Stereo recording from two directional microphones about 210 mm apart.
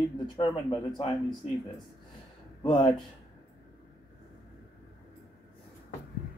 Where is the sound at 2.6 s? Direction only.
20° left (ahead or behind).